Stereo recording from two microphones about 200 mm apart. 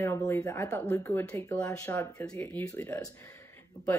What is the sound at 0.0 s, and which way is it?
Speech, 15° left (ahead or behind).